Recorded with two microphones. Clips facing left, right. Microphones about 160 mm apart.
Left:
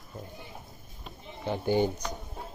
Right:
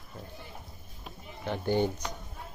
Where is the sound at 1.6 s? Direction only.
10° left (ahead or behind).